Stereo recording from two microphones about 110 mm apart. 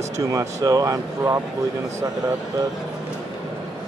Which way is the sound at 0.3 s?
30° right (ahead or behind).